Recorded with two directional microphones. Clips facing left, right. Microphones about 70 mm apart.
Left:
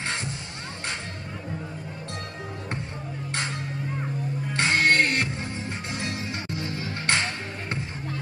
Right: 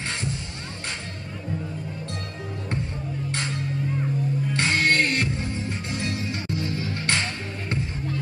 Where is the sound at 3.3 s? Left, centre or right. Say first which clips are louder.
Even; left.